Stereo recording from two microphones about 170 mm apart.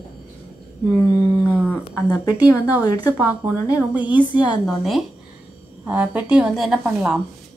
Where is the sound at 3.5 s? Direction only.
10° right (ahead or behind).